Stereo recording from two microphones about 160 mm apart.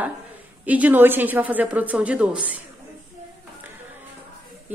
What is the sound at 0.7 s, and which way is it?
A woman's voice, 10° right (ahead or behind).